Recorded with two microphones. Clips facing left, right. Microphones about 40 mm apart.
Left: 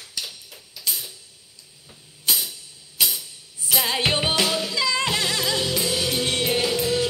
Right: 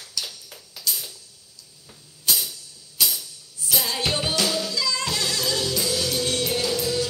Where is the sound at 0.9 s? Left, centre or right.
Left.